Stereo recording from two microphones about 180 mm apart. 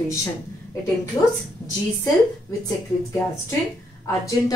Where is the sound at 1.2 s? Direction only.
20° left (ahead or behind).